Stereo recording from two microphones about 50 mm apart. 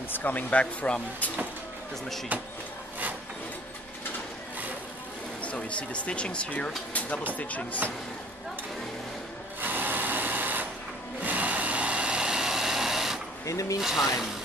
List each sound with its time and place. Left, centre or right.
0.1 s speech: left
5.4 s speech: left
9.6 s sewing machine: right
11.2 s tools: right; by 13.2 s centre
13.7 s speech: centre